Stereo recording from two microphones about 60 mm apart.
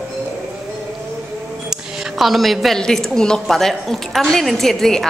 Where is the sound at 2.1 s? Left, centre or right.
Centre.